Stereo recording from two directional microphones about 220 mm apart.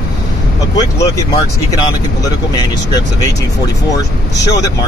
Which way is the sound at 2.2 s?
15° left (ahead or behind).